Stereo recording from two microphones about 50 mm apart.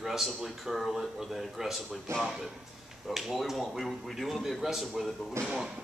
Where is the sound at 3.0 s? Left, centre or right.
Centre.